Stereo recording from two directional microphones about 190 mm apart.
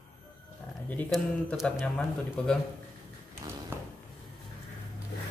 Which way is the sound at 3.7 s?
10° right (ahead or behind).